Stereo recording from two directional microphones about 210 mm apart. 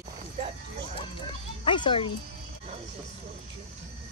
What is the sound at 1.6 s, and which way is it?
Speech, 20° left (ahead or behind).